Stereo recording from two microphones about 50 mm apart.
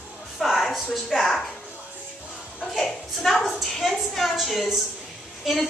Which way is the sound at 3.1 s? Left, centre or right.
Centre.